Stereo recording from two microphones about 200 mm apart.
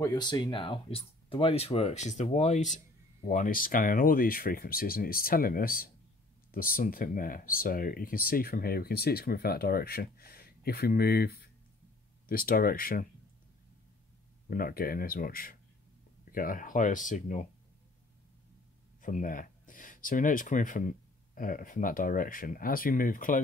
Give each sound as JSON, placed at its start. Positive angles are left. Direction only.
{"t": 0.0, "sound": "speech", "side_deg": 20}
{"t": 14.5, "sound": "speech", "side_deg": 45}
{"t": 18.9, "sound": "speech", "side_deg": 40}